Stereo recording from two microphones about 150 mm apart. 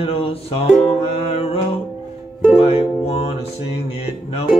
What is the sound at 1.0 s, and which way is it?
Music, 45° left (ahead or behind).